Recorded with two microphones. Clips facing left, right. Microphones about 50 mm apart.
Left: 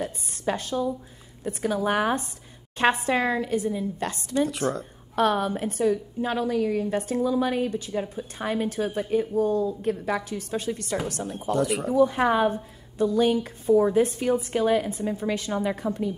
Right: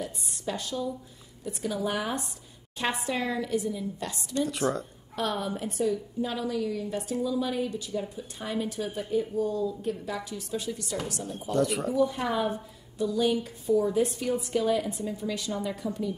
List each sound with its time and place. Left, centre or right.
0.0 s a sound: left
1.4 s a woman's voice: left
5.1 s a woman's voice: left
11.5 s speech: centre
12.0 s a woman's voice: left